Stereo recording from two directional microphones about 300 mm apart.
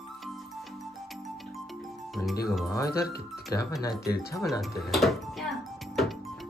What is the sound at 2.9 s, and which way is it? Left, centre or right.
Speech, left.